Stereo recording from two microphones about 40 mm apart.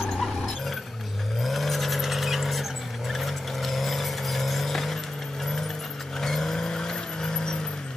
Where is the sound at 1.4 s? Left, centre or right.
Centre.